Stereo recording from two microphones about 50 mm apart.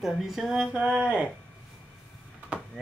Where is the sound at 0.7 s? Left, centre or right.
Centre.